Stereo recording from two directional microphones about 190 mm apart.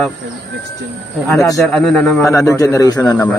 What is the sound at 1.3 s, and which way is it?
Speech, 15° left (ahead or behind).